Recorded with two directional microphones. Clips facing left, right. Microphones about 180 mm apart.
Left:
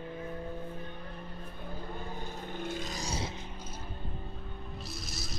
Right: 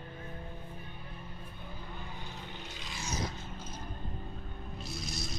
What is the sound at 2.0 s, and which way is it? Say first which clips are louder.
Vehicle: left 5 dB; 45° left (ahead or behind).